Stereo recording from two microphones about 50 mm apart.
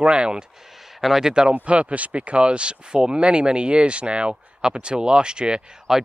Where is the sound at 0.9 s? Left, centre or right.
Centre.